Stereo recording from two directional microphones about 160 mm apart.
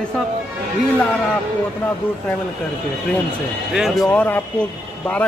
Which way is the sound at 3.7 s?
Centre (ahead or behind).